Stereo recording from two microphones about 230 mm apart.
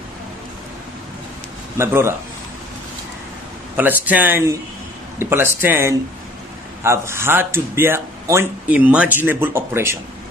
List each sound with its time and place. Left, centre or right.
1.8 s speech: centre
3.7 s speech: centre